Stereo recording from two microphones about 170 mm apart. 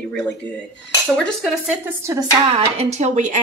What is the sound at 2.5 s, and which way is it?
Speech, 40° right (ahead or behind).